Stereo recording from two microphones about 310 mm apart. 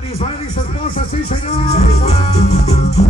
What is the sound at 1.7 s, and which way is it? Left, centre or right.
Music, left.